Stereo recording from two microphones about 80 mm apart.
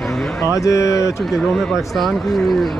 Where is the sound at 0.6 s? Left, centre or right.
Left.